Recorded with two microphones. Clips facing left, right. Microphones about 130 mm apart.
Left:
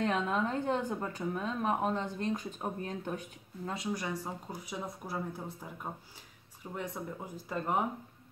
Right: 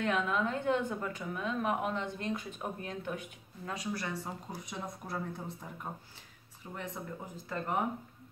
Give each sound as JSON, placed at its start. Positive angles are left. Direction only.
{"t": 0.0, "sound": "a woman's voice", "side_deg": 35}
{"t": 6.7, "sound": "speech", "side_deg": 10}